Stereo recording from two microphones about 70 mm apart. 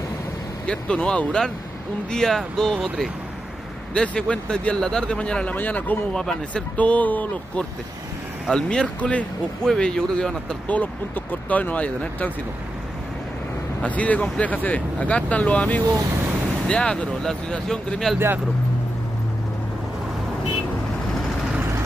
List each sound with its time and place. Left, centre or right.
0.7 s a man's voice: centre
6.1 s a man's voice: centre
6.8 s speech: left
8.5 s a man's voice: centre
13.8 s a man's voice: left